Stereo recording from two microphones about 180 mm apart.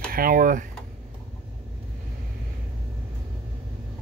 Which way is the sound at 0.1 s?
50° right (ahead or behind).